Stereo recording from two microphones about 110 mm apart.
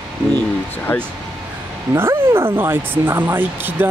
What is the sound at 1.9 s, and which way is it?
Speech, 20° right (ahead or behind).